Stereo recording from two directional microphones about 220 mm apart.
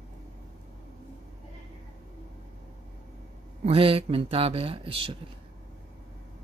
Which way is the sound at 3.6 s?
25° right (ahead or behind).